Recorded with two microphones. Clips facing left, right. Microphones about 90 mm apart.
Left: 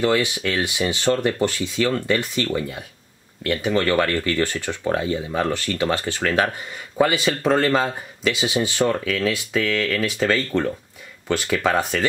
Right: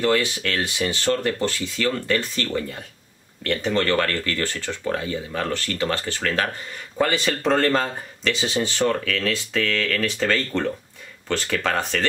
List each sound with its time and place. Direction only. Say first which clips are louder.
0.0 s speech: left 1 dB; 15° left (ahead or behind)